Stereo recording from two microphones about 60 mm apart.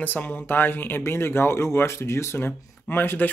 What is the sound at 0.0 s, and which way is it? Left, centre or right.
Speech, left.